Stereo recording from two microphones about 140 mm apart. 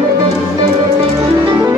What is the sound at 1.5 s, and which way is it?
Music, 25° right (ahead or behind).